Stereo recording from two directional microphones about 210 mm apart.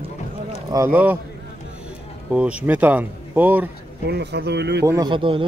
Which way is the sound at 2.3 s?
5° right (ahead or behind).